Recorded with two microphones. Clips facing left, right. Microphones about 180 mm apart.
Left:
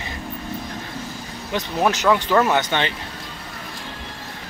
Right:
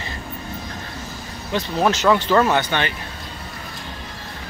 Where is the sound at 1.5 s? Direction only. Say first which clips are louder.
Right 1 dB; 15° left (ahead or behind).